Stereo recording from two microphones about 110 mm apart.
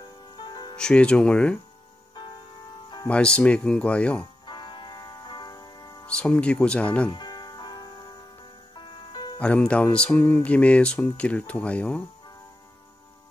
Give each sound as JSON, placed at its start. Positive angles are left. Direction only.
{"t": 0.0, "sound": "music", "side_deg": 40}
{"t": 0.7, "sound": "speech", "side_deg": 10}
{"t": 3.1, "sound": "speech", "side_deg": 10}
{"t": 4.5, "sound": "music", "side_deg": 45}
{"t": 6.0, "sound": "speech", "side_deg": 10}
{"t": 7.1, "sound": "music", "side_deg": 40}
{"t": 9.4, "sound": "speech", "side_deg": 10}